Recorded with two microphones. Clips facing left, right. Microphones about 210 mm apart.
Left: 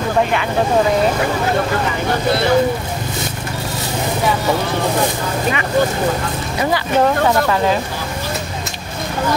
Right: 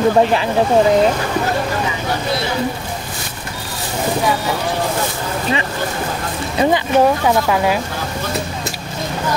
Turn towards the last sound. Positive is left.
turn(degrees=-10)  # may be behind; listen again after turning